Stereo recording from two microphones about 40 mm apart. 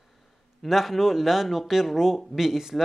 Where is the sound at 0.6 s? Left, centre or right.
Centre.